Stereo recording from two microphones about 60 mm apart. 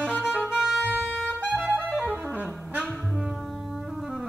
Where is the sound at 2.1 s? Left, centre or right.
Right.